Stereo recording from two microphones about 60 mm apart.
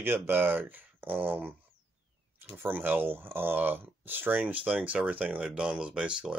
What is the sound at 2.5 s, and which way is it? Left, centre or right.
Speech, right.